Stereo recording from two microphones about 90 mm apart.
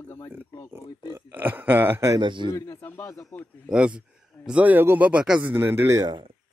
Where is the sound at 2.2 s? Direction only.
65° right (ahead or behind).